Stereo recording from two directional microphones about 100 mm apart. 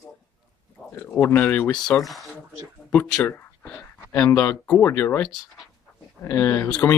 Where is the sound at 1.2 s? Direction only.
20° left (ahead or behind).